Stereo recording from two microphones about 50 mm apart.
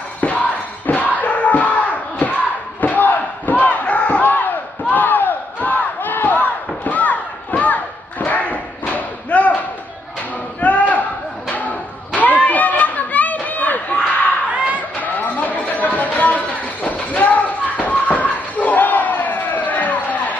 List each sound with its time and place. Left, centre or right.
0.2 s music: left
2.8 s crowd: left
10.6 s a sound: left
11.5 s chatter: left